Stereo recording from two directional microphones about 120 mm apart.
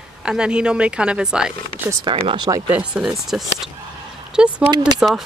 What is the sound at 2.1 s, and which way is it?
Speech, 40° right (ahead or behind).